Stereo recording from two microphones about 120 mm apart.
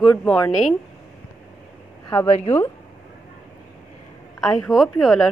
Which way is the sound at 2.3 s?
55° left (ahead or behind).